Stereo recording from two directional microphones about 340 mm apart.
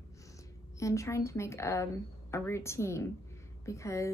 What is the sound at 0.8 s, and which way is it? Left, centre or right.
A woman's voice, centre.